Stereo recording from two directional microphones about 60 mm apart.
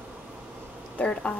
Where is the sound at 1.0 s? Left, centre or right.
Centre.